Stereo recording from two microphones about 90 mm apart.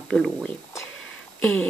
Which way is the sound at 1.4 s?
15° left (ahead or behind).